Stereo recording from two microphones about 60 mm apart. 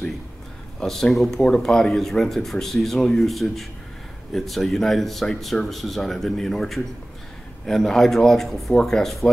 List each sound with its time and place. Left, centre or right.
0.7 s speech: centre